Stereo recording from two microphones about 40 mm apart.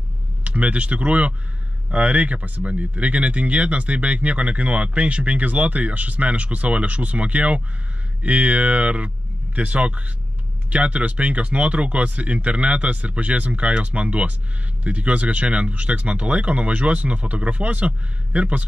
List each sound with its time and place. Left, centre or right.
0.4 s speech: right